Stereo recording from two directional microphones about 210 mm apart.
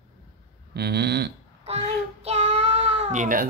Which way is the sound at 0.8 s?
50° right (ahead or behind).